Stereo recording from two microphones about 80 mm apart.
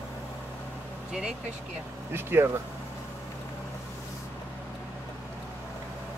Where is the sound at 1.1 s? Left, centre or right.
Centre.